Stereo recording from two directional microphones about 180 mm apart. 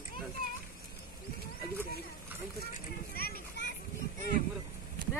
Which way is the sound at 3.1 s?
60° left (ahead or behind).